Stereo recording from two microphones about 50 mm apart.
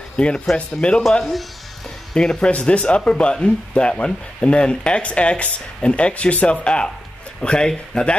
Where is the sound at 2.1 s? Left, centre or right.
Centre.